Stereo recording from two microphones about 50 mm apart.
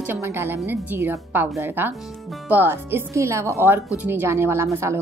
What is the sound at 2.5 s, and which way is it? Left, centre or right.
Speech, right.